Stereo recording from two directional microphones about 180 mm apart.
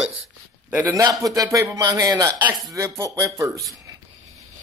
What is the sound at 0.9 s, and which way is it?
Speech, 20° right (ahead or behind).